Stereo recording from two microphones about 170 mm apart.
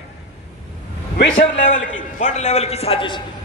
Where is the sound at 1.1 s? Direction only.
85° left.